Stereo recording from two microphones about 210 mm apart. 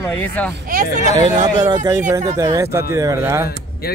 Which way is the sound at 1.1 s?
20° right (ahead or behind).